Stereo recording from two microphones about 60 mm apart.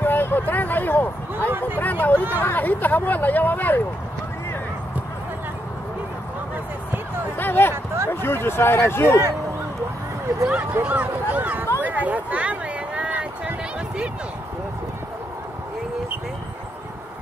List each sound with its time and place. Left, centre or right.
0.0 s a sound: left
1.8 s speech: left
7.3 s speech: left
7.7 s speech: right
8.1 s speech: left
10.7 s a sound: right